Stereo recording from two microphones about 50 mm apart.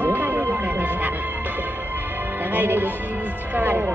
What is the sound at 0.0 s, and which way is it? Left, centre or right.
Music, right.